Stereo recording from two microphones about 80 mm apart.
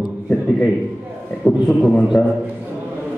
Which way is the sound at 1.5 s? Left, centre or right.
Centre.